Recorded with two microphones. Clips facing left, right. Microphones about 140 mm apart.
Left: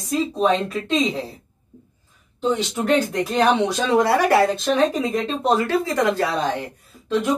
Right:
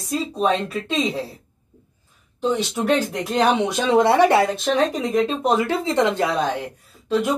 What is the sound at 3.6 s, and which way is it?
Speech, 20° right (ahead or behind).